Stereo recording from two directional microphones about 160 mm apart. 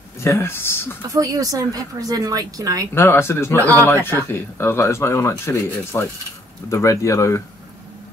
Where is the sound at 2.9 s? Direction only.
15° left (ahead or behind).